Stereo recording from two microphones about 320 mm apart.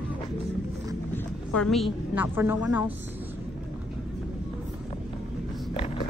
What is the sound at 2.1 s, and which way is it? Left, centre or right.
Speech, centre.